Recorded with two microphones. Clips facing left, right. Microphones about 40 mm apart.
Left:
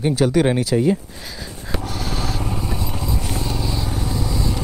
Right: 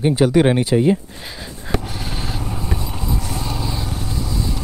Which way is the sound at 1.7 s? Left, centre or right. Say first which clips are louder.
Right 1 dB; centre.